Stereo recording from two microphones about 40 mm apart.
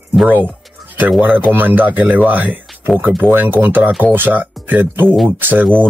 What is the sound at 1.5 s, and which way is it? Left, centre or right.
Speech, right.